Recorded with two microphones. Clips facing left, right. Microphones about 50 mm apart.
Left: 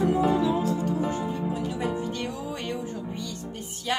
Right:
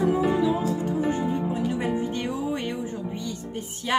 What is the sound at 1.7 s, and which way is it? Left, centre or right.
Speech, right.